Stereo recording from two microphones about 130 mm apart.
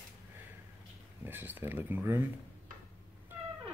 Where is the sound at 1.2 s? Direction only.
15° right (ahead or behind).